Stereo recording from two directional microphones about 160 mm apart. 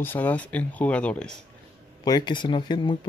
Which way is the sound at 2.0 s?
25° left (ahead or behind).